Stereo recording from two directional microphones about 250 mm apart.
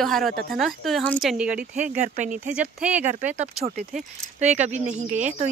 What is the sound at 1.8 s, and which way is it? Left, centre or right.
Speech, right.